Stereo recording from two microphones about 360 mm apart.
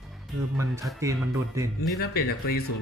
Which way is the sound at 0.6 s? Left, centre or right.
Centre.